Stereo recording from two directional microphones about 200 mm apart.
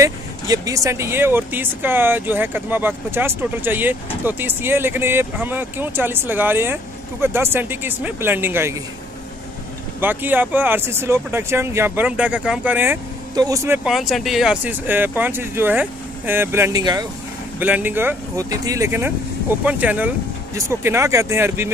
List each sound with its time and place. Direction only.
0.0 s speech: 15° right (ahead or behind)
9.9 s speech: 10° right (ahead or behind)
13.8 s speech: centre (ahead or behind); by 17.1 s 20° right (ahead or behind)
17.6 s speech: 10° right (ahead or behind)